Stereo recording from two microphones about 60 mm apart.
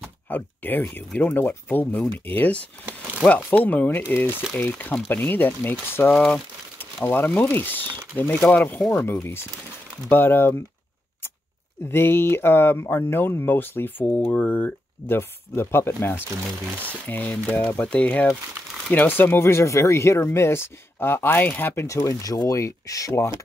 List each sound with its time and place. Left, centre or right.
0.3 s speech: left
6.1 s speech: centre
7.3 s speech: left
8.9 s speech: left
11.9 s speech: left
21.8 s speech: left